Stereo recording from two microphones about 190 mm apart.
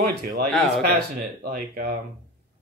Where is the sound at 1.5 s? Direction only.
55° right (ahead or behind).